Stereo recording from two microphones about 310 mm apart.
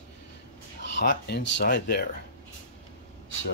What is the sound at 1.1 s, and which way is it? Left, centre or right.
Speech, left.